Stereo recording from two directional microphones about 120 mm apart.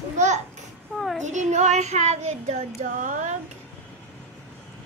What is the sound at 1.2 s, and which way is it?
Child singing, 85° right.